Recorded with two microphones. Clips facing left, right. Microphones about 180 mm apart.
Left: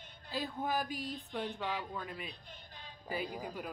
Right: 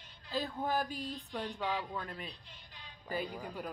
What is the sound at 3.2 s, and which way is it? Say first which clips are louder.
Speech: even; 5° left (ahead or behind).